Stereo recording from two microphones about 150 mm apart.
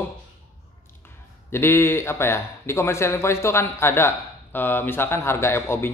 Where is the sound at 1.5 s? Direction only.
15° left (ahead or behind).